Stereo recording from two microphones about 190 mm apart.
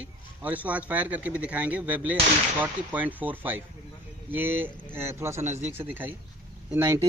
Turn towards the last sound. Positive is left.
turn(degrees=-15)  # may be behind; listen again after turning